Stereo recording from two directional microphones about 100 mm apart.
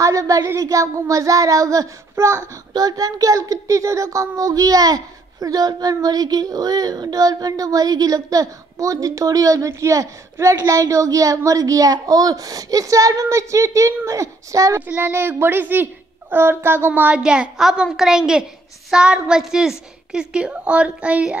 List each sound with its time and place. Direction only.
0.0 s a sound: 35° right (ahead or behind)
0.5 s speech: 35° right (ahead or behind)
2.7 s speech: 40° right (ahead or behind)
14.9 s a woman's voice: 20° right (ahead or behind)